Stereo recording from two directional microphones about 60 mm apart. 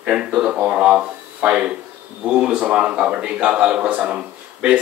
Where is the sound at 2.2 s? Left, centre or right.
Centre.